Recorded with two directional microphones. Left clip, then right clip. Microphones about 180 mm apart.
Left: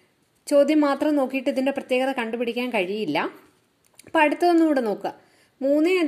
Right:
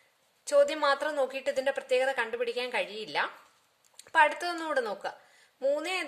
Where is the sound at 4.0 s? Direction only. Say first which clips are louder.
Left 5 dB; 10° left (ahead or behind).